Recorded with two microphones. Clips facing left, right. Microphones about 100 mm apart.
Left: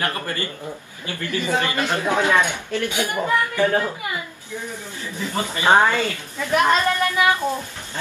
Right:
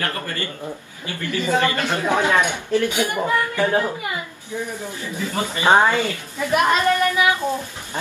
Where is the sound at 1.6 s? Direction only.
15° left (ahead or behind).